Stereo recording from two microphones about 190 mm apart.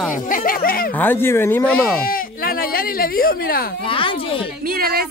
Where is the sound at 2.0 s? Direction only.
50° left (ahead or behind).